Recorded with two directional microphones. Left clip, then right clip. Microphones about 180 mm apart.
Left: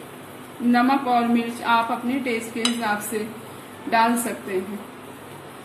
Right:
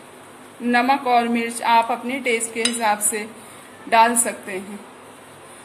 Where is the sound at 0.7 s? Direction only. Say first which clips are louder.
Right 3 dB; 40° right (ahead or behind).